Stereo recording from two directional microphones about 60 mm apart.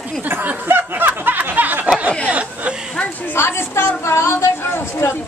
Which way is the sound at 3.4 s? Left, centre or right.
Left.